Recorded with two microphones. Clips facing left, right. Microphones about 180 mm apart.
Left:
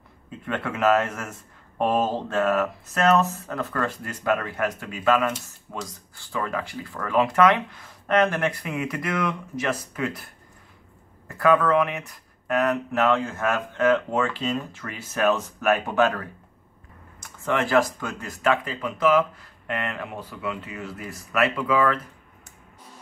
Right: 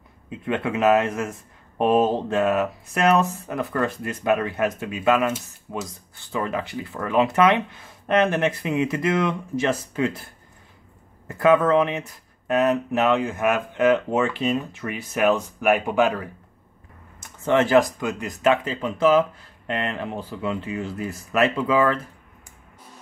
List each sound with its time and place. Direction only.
0.5 s speech: 20° right (ahead or behind)
5.3 s speech: 5° right (ahead or behind)
6.3 s speech: 20° right (ahead or behind)
11.2 s speech: 20° right (ahead or behind)